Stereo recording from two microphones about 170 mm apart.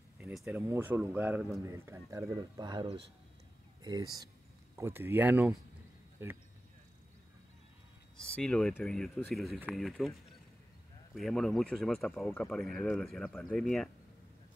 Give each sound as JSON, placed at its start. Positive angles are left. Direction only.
{"t": 0.2, "sound": "speech", "side_deg": 0}
{"t": 0.6, "sound": "speech", "side_deg": -15}
{"t": 8.4, "sound": "speech", "side_deg": 5}
{"t": 11.1, "sound": "speech", "side_deg": 0}